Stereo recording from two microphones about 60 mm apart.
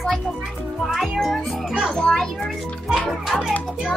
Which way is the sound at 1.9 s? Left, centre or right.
Centre.